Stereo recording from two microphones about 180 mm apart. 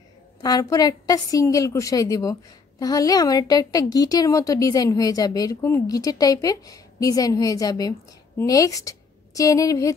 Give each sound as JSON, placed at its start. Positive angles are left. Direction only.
{"t": 0.4, "sound": "a woman's voice", "side_deg": 20}